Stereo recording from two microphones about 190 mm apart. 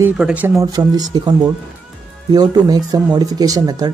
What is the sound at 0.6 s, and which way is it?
Speech, 20° right (ahead or behind).